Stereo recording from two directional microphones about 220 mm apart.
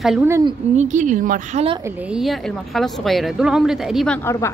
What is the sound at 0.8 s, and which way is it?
A woman's voice, 35° right (ahead or behind).